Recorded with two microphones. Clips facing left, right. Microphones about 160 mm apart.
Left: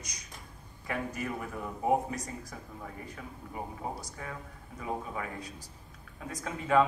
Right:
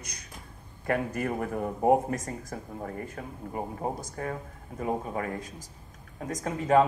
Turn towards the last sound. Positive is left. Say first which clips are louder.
# right 4 dB
turn(degrees=-40)  # may be behind; listen again after turning